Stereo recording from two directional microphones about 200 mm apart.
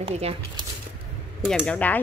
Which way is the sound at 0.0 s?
30° right (ahead or behind).